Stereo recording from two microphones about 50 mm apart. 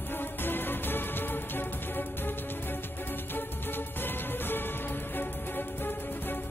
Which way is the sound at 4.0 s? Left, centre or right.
Left.